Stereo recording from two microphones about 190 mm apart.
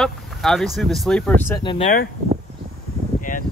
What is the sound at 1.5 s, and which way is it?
Speech, 25° left (ahead or behind).